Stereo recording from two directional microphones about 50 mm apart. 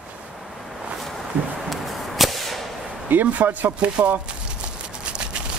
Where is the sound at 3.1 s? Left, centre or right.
Right.